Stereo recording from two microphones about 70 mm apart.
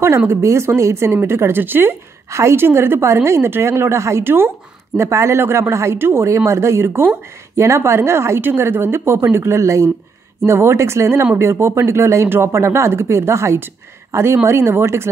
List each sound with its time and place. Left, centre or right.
0.3 s speech: right
2.2 s speech: right
4.9 s speech: right